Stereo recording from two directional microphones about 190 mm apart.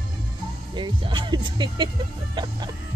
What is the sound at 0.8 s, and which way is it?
Music, 25° right (ahead or behind).